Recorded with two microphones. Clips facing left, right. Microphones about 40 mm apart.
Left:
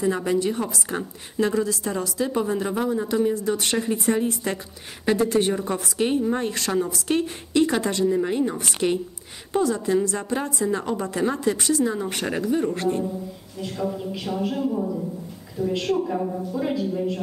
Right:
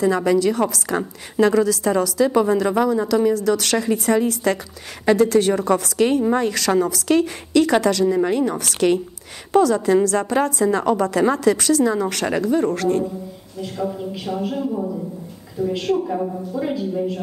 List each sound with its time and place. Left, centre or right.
0.0 s a woman's voice: right
1.4 s a woman's voice: right
2.5 s a woman's voice: right
6.3 s a woman's voice: right
7.8 s a woman's voice: right
9.5 s a woman's voice: right
10.0 s a woman's voice: right
12.5 s a woman's voice: right
12.8 s speech: right
13.6 s a woman's voice: centre